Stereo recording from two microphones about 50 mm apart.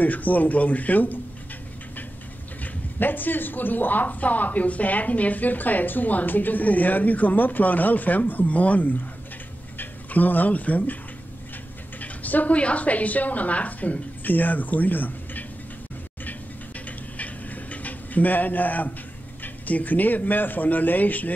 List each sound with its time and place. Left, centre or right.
0.0 s speech: left
2.6 s speech: left
12.0 s a woman's voice: left
16.8 s tick-tock: left
19.4 s speech: left